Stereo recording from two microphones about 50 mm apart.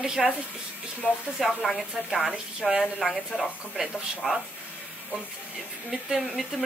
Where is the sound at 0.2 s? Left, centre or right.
Centre.